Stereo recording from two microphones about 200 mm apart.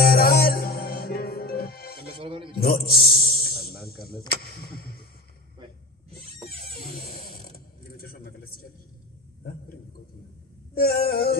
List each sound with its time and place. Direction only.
0.0 s music: 50° left (ahead or behind)
2.2 s a sound: 25° right (ahead or behind)
2.6 s music: 50° left (ahead or behind)
3.8 s speech: 50° left (ahead or behind)
6.8 s mechanisms: 45° left (ahead or behind)
10.7 s speech: 50° left (ahead or behind)